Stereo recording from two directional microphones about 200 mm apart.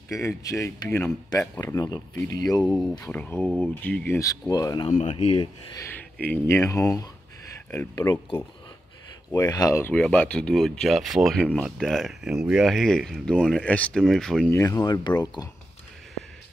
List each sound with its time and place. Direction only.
0.1 s speech: 15° left (ahead or behind)
2.7 s speech: 5° left (ahead or behind)
3.4 s speech: 5° right (ahead or behind)
3.8 s speech: 10° left (ahead or behind)
4.9 s speech: 35° left (ahead or behind)
5.4 s speech: 15° left (ahead or behind)
14.5 s speech: 15° left (ahead or behind)